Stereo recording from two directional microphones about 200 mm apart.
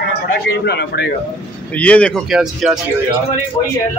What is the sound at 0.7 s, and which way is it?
Speech, 55° left (ahead or behind).